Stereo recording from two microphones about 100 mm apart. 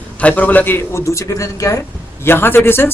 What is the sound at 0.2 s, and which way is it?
A man's voice, 15° left (ahead or behind).